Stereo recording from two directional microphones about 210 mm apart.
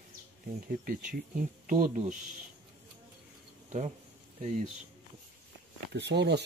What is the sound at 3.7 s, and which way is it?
Speech, 35° right (ahead or behind).